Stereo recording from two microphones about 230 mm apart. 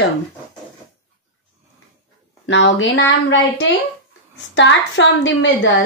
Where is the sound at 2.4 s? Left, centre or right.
Left.